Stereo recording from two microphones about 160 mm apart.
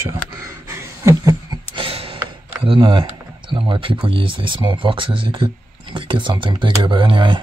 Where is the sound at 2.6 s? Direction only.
30° right (ahead or behind).